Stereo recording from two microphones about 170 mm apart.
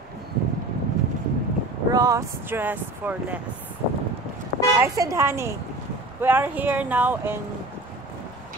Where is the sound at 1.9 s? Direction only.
20° right (ahead or behind).